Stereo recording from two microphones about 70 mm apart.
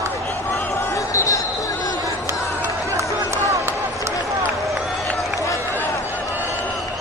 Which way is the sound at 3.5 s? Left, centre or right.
Right.